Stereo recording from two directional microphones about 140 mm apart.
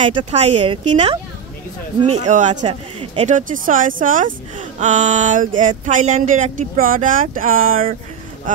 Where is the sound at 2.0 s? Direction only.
55° right (ahead or behind); by 4.3 s 70° right (ahead or behind).